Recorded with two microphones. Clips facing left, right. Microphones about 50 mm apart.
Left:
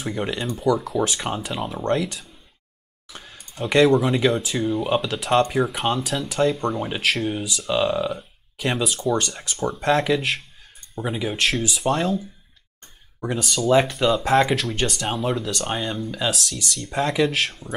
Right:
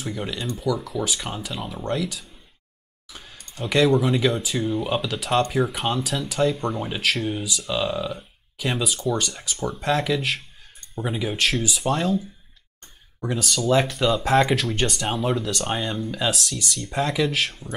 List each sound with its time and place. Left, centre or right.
0.1 s speech: left
1.5 s speech: centre
3.2 s a sound: centre
3.8 s speech: centre
13.2 s speech: centre
17.0 s speech: centre